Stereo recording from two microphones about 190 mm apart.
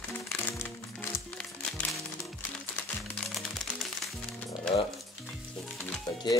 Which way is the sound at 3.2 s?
Centre (ahead or behind).